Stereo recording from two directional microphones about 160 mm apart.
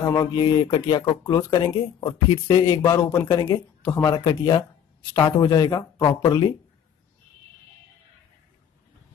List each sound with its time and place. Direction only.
0.0 s speech: 20° left (ahead or behind)
2.7 s speech: 20° left (ahead or behind)
4.1 s speech: 25° left (ahead or behind)